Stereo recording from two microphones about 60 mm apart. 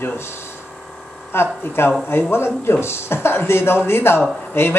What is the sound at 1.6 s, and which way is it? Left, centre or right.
Speech, left.